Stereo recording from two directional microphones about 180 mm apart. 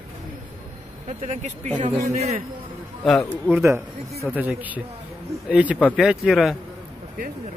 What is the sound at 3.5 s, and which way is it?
Speech, 15° right (ahead or behind).